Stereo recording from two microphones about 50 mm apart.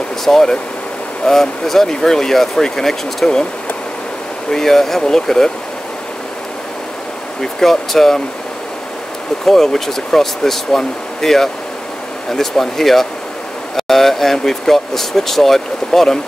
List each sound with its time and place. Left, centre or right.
0.2 s speech: centre
4.5 s speech: centre
7.6 s speech: centre
9.5 s speech: centre